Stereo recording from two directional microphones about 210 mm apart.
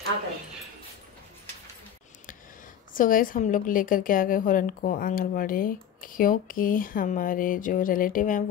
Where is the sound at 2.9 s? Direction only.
40° left (ahead or behind).